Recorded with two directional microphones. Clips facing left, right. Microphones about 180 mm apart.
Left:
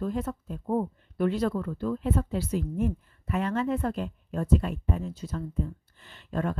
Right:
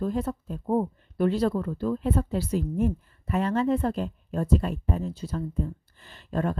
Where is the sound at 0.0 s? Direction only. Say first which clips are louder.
Right 3 dB; 35° right (ahead or behind).